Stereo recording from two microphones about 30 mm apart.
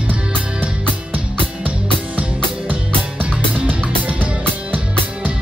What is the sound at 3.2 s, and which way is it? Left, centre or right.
Music, right.